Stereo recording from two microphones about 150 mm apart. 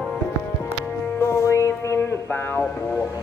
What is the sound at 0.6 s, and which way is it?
Music, 15° left (ahead or behind).